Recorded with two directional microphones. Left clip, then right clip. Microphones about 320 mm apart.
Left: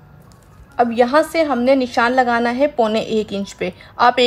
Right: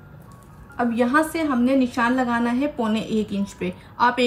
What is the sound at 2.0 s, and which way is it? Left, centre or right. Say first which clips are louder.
A woman's voice: left 7 dB; left.